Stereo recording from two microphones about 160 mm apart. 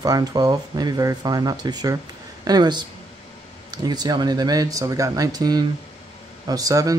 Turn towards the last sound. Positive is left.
turn(degrees=-20)  # may be behind; listen again after turning